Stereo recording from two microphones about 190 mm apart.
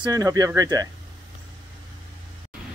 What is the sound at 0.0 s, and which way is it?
Speech, 20° right (ahead or behind).